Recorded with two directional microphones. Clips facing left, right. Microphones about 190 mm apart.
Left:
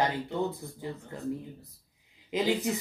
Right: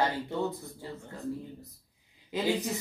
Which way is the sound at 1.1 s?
20° left (ahead or behind).